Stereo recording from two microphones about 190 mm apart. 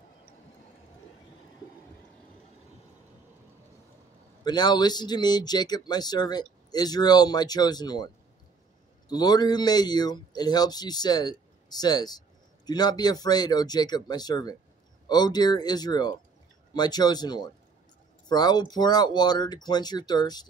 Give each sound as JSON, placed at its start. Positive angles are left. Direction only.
{"t": 4.5, "sound": "speech", "side_deg": 20}
{"t": 9.1, "sound": "speech", "side_deg": 20}